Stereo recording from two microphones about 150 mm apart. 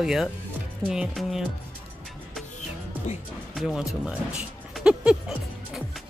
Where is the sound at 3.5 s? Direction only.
5° right (ahead or behind).